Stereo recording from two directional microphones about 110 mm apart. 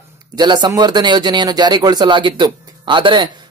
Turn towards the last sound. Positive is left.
turn(degrees=-45)  # may be behind; listen again after turning